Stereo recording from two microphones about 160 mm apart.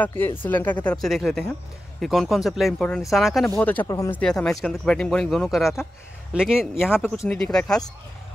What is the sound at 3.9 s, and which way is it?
Speech, 20° left (ahead or behind).